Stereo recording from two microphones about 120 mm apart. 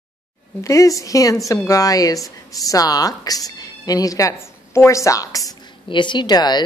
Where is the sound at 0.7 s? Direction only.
25° left (ahead or behind).